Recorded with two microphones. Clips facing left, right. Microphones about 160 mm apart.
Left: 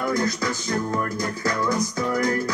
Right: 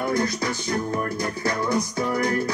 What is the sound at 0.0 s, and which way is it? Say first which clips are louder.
Music: even; 30° right (ahead or behind).